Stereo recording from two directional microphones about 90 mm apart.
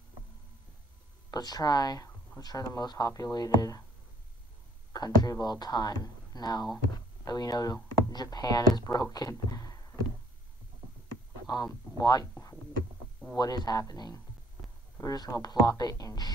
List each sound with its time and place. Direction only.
1.3 s speech: 50° left (ahead or behind)
4.9 s speech: 45° left (ahead or behind)
9.5 s a sound: 40° left (ahead or behind)
11.5 s speech: 50° left (ahead or behind)
13.4 s speech: 50° left (ahead or behind)